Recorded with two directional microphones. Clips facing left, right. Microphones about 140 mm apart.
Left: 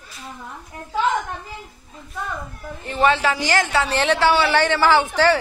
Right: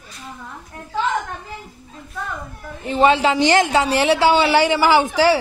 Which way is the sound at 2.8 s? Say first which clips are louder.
Right 3 dB; 15° right (ahead or behind).